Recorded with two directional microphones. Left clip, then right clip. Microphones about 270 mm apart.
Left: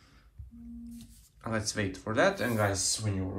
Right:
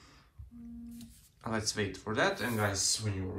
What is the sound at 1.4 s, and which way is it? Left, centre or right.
Speech, centre.